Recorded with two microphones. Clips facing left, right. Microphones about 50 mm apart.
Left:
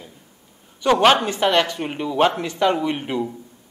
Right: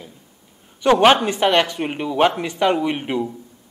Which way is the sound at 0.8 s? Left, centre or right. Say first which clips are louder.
Right 2 dB; centre.